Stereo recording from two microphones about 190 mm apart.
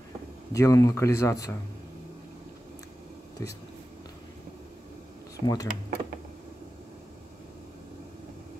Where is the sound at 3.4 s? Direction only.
15° left (ahead or behind).